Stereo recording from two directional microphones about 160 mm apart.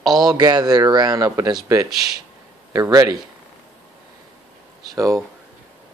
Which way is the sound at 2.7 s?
20° right (ahead or behind).